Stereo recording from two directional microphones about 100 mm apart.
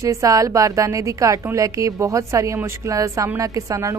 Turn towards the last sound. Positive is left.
turn(degrees=-30)  # may be behind; listen again after turning